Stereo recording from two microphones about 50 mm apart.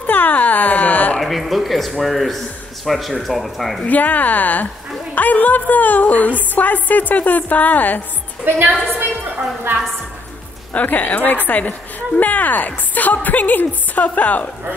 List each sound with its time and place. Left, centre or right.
0.0 s a sound: left
1.2 s a man's voice: centre
3.8 s speech: left
8.5 s a woman's voice: right
10.7 s speech: left